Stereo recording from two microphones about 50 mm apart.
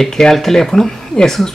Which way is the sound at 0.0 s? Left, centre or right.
Centre.